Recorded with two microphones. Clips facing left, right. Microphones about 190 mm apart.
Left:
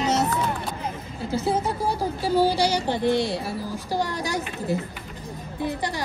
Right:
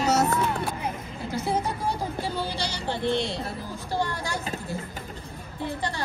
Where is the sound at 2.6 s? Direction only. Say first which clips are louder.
Left 6 dB; 15° left (ahead or behind).